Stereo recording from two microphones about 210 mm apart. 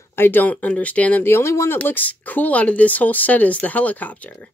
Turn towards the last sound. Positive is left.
turn(degrees=5)  # may be behind; listen again after turning